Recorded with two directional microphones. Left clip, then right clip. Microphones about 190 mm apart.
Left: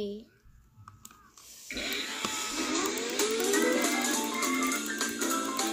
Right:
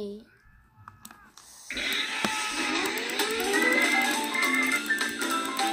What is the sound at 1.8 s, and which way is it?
Music, 15° right (ahead or behind).